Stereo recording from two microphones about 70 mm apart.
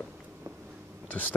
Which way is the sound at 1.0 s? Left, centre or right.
Left.